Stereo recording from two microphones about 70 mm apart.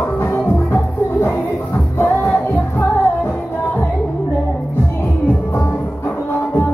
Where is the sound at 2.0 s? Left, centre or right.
Left.